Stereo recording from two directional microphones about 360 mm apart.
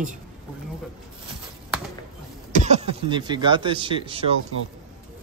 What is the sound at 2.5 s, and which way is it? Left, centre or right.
A man's voice, centre.